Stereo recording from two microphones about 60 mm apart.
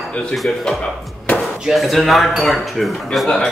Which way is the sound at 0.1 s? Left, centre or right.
Centre.